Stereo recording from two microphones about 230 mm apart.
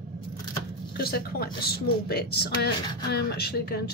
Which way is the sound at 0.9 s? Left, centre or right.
Left.